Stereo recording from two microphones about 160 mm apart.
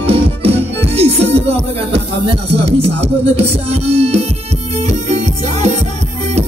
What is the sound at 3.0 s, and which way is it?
Music, 40° right (ahead or behind).